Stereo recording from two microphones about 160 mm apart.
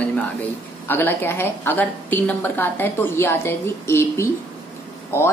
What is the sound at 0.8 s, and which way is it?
A woman's voice, 15° left (ahead or behind).